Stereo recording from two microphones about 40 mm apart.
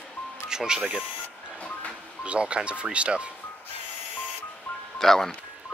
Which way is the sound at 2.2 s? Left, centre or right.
Right.